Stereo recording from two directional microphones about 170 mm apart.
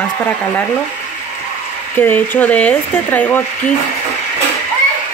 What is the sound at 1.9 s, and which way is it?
A woman's voice, 10° left (ahead or behind).